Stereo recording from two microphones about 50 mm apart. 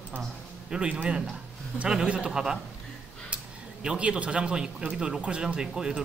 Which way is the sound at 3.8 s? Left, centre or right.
Centre.